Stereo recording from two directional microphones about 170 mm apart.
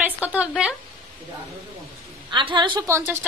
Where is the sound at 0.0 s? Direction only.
10° right (ahead or behind).